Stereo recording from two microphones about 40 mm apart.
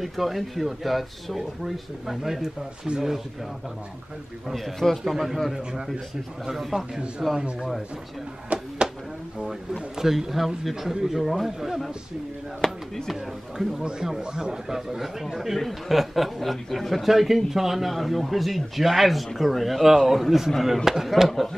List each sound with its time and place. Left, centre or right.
0.0 s a man's voice: centre
4.7 s speech: centre
5.0 s a man's voice: centre
8.5 s speech: right
9.9 s a man's voice: centre
14.2 s a man's voice: centre